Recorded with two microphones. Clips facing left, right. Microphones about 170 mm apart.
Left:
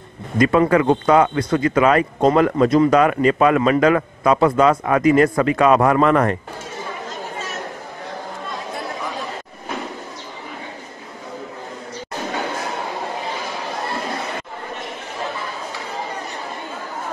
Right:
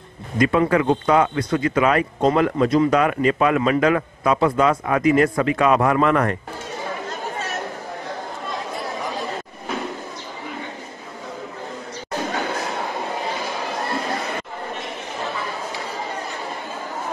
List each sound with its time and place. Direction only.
0.4 s speech: 45° left (ahead or behind)